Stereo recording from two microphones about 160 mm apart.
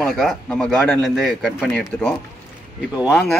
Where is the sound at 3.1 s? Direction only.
5° left (ahead or behind).